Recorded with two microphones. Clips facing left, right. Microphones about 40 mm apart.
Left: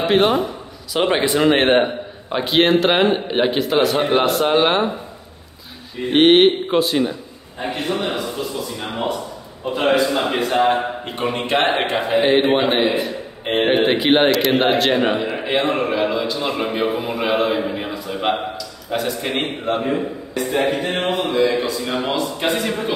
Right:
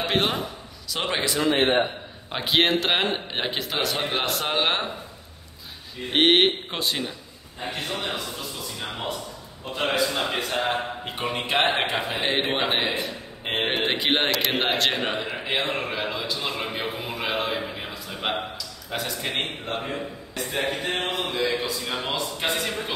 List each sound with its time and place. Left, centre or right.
0.0 s speech: centre
0.9 s a man's voice: centre
1.3 s a man's voice: left
1.6 s a man's voice: left
2.2 s a man's voice: centre
6.1 s a man's voice: centre
19.6 s speech: centre